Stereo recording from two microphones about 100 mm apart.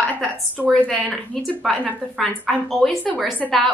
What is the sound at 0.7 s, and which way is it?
A woman's voice, 10° left (ahead or behind).